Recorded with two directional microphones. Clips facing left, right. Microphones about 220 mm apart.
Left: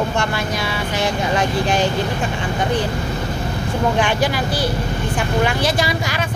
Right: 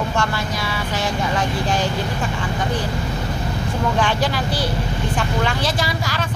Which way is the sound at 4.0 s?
15° left (ahead or behind).